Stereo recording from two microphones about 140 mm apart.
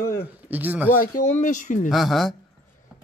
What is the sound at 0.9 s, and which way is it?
Speech, 90° left.